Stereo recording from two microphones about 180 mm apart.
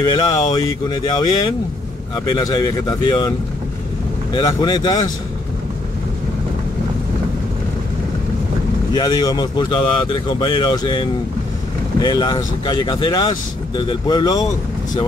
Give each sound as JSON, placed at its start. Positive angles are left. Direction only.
{"t": 0.0, "sound": "speech", "side_deg": 20}
{"t": 8.9, "sound": "speech", "side_deg": 20}